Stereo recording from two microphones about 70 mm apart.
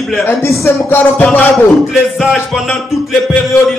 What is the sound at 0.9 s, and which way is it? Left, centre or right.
Music, left.